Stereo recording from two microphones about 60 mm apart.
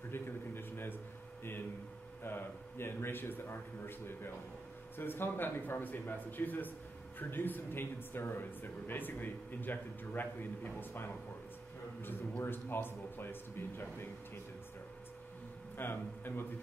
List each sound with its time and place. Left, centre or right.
0.1 s speech: left
2.2 s speech: left
15.8 s speech: left